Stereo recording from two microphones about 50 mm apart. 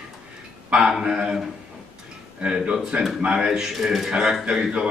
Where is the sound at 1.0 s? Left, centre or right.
Centre.